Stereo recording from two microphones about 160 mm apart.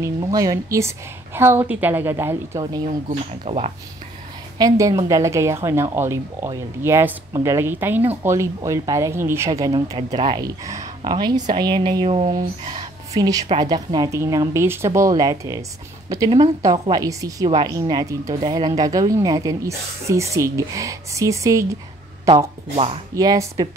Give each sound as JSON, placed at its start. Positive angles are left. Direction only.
{"t": 0.0, "sound": "a woman's voice", "side_deg": -20}
{"t": 2.9, "sound": "speech", "side_deg": -45}
{"t": 4.6, "sound": "a woman's voice", "side_deg": -20}
{"t": 13.1, "sound": "speech", "side_deg": -25}
{"t": 23.1, "sound": "speech", "side_deg": -20}